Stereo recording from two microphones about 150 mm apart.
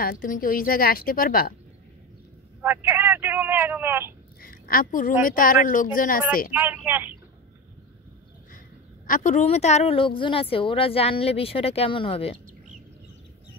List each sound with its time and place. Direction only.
0.0 s a woman's voice: 65° left (ahead or behind)
2.6 s speech: 15° right (ahead or behind)
4.4 s a woman's voice: 75° left (ahead or behind)
6.5 s speech: 10° right (ahead or behind)
9.0 s a woman's voice: 60° left (ahead or behind); by 12.4 s 40° left (ahead or behind)